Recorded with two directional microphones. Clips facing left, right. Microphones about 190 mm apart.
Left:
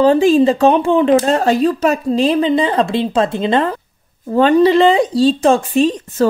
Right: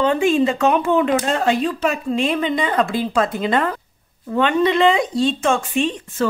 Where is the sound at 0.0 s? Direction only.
35° left (ahead or behind).